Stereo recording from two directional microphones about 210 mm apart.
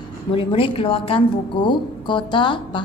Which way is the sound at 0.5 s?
25° left (ahead or behind).